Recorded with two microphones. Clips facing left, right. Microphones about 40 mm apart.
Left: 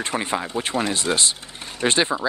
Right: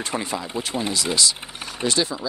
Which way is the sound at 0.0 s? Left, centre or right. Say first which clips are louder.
Left 2 dB; left.